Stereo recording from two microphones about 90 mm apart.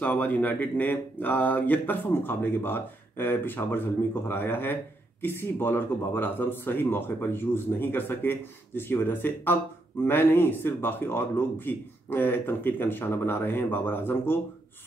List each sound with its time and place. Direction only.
0.0 s speech: 20° left (ahead or behind)